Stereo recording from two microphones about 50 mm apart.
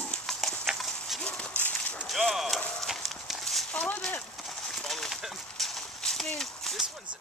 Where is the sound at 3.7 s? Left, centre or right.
Left.